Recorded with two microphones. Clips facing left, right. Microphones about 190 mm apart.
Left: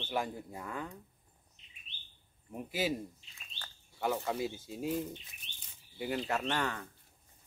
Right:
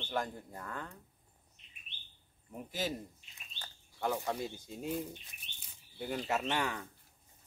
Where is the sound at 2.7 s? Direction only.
10° left (ahead or behind).